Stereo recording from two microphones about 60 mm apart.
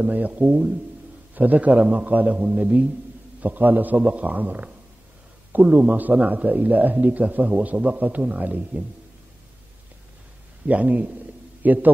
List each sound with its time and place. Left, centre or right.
0.0 s a man's voice: right
10.7 s a man's voice: right